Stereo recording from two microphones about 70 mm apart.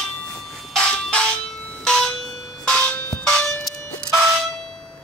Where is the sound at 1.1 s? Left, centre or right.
Centre.